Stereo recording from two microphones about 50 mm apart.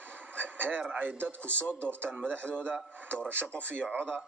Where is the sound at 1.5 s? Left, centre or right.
Left.